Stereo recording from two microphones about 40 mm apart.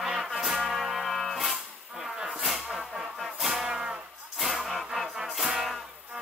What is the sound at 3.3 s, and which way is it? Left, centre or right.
Music, centre.